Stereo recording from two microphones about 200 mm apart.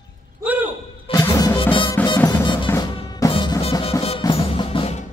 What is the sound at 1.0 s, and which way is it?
Music, 20° left (ahead or behind).